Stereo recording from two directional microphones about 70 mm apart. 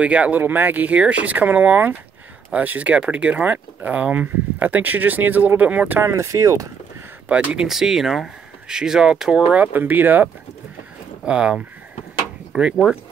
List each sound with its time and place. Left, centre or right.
0.0 s speech: centre
6.0 s speech: right
7.2 s speech: centre
7.6 s speech: centre
9.7 s speech: right
11.2 s speech: centre